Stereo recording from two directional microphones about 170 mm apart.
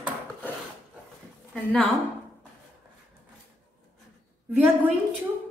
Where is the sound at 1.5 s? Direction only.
5° left (ahead or behind).